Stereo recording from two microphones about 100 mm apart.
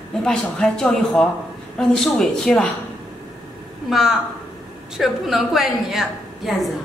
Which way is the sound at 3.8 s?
5° right (ahead or behind).